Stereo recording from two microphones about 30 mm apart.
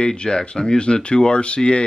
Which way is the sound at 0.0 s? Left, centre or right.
Left.